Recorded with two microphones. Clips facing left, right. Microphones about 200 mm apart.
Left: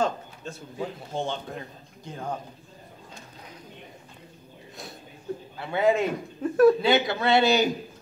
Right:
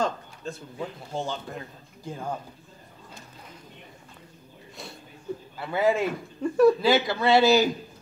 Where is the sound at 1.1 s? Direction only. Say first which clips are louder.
Left 1 dB; centre (ahead or behind).